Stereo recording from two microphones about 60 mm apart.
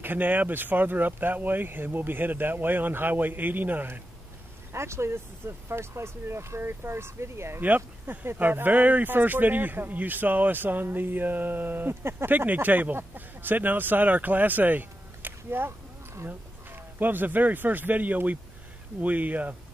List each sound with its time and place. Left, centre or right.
0.0 s speech: right
4.7 s speech: right
7.6 s speech: right